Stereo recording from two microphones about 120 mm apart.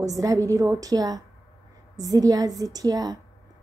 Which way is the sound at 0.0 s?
30° right (ahead or behind).